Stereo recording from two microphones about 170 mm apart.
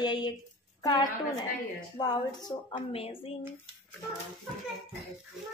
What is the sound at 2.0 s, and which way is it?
A woman's voice, 25° left (ahead or behind).